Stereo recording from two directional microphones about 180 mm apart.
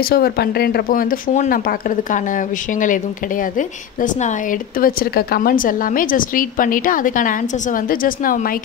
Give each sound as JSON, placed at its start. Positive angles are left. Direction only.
{"t": 0.0, "sound": "speech", "side_deg": 60}